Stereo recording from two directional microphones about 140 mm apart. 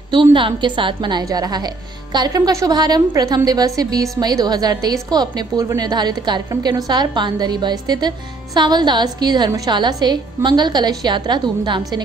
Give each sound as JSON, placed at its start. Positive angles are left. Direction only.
{"t": 0.1, "sound": "a woman's voice", "side_deg": -35}